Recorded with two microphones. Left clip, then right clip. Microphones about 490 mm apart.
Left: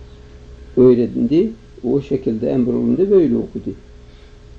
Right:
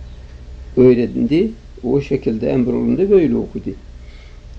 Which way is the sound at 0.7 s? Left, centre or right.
Right.